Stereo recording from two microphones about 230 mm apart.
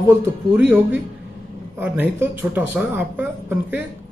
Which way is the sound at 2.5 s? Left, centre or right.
Centre.